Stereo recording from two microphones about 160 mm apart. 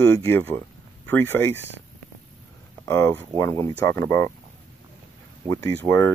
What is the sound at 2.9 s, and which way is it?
Speech, 15° left (ahead or behind).